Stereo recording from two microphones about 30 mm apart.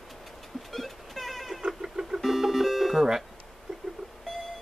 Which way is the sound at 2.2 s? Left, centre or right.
Centre.